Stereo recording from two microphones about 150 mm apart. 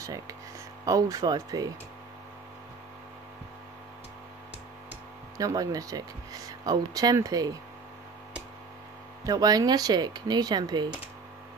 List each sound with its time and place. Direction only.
0.8 s speech: 25° right (ahead or behind)
5.4 s speech: 25° right (ahead or behind)
9.2 s speech: 25° right (ahead or behind)